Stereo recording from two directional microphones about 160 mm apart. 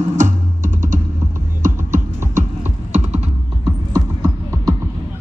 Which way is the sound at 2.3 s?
45° right (ahead or behind).